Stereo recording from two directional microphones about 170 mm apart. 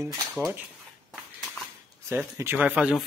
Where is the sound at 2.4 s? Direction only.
10° right (ahead or behind).